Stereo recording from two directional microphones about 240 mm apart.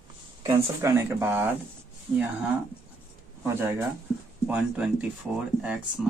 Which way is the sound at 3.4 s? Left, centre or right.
Centre.